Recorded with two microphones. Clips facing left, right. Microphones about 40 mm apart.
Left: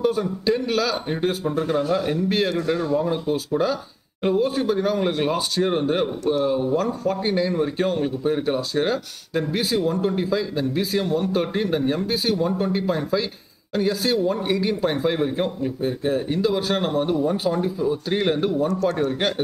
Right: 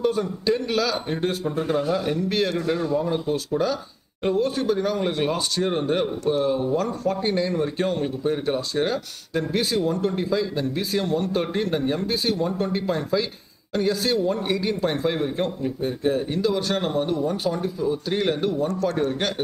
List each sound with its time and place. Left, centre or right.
0.0 s speech: centre
18.8 s speech: centre